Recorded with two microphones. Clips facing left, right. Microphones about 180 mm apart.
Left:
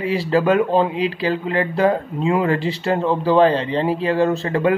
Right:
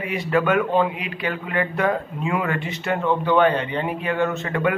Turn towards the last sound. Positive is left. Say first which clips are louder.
# left 5 dB
turn(degrees=30)  # may be behind; listen again after turning